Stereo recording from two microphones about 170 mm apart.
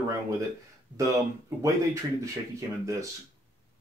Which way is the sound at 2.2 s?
20° right (ahead or behind).